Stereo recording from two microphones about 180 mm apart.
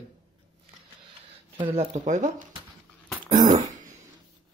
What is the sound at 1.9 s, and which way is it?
Speech, 45° right (ahead or behind).